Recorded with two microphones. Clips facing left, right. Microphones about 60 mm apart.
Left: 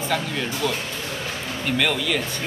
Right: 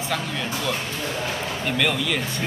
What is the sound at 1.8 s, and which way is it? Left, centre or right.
Speech, centre.